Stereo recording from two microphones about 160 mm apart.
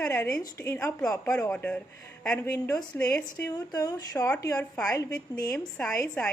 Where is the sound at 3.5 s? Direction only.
20° left (ahead or behind); by 5.9 s 5° left (ahead or behind).